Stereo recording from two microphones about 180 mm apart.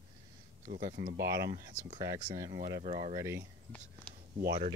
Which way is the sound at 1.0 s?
70° right (ahead or behind).